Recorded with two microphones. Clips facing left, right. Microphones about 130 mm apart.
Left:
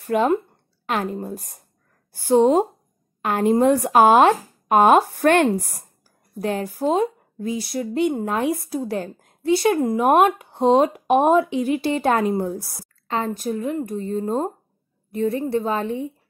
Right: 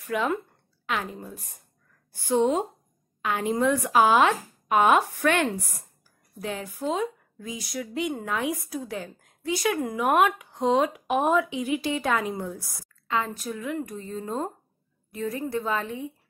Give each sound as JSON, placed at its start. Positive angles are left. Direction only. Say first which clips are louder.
{"t": 0.0, "sound": "a woman's voice", "louder": "left 8 dB", "side_deg": 40}
{"t": 8.9, "sound": "a woman's voice", "louder": "left 8 dB", "side_deg": 45}
{"t": 9.5, "sound": "a woman's voice", "louder": "left 8 dB", "side_deg": 30}
{"t": 13.3, "sound": "speech", "louder": "left 7 dB", "side_deg": 35}
{"t": 14.1, "sound": "a woman's voice", "louder": "left 8 dB", "side_deg": 45}
{"t": 15.1, "sound": "a woman's voice", "louder": "left 7 dB", "side_deg": 30}